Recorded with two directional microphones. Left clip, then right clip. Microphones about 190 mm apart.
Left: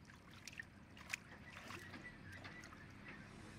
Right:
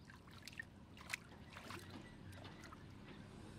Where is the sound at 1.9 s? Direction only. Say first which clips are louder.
Left 3 dB; 20° left (ahead or behind).